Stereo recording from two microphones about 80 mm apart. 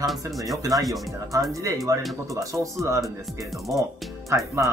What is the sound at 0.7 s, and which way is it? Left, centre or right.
Speech, centre.